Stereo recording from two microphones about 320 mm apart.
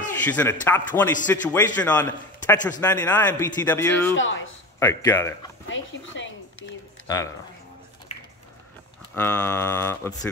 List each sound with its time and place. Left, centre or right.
0.2 s a man's voice: centre
4.1 s speech: left
4.7 s a man's voice: centre
5.7 s speech: left
7.1 s a man's voice: centre
9.1 s a man's voice: centre